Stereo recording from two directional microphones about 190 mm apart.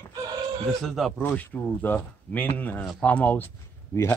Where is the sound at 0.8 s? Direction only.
Centre (ahead or behind).